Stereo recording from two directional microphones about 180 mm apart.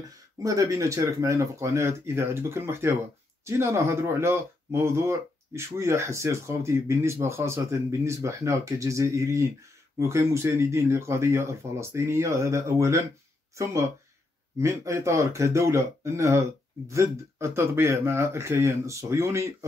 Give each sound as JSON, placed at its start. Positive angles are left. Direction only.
{"t": 0.4, "sound": "speech", "side_deg": -15}
{"t": 14.6, "sound": "speech", "side_deg": -15}